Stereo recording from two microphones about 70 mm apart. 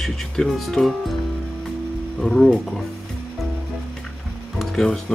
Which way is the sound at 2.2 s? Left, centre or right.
Centre.